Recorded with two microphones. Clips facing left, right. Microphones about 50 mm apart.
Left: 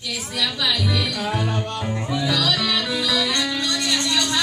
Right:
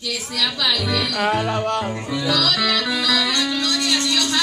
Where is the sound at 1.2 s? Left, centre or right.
Right.